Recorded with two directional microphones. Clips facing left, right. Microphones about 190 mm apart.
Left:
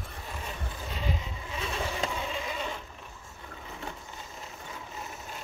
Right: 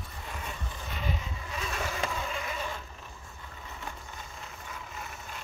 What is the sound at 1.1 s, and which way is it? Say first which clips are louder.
Vehicle: left 1 dB; 25° left (ahead or behind).